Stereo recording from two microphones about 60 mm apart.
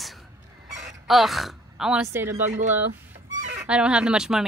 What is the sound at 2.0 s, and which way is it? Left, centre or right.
Speech, right.